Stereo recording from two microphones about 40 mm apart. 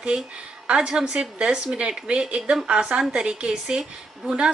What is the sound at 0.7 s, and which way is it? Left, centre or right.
A woman's voice, centre.